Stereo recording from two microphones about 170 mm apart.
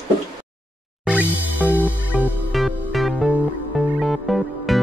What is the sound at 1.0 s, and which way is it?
Music, 10° right (ahead or behind).